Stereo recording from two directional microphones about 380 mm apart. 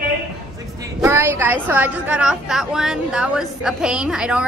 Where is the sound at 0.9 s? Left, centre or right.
Centre.